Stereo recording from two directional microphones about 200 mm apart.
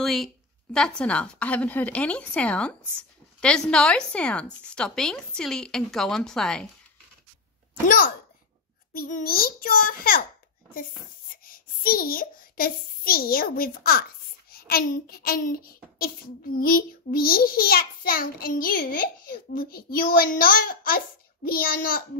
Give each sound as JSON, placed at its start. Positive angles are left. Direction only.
{"t": 0.0, "sound": "speech", "side_deg": 0}
{"t": 8.9, "sound": "a child's voice", "side_deg": 45}
{"t": 11.4, "sound": "a child's voice", "side_deg": 45}